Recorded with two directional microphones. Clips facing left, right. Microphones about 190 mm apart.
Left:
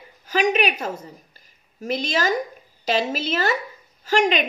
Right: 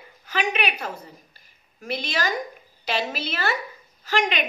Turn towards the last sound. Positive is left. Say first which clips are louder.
# left 5 dB
turn(degrees=45)  # may be behind; listen again after turning